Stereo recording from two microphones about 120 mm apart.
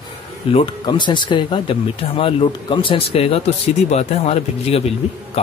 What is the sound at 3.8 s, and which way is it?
Speech, 65° left (ahead or behind).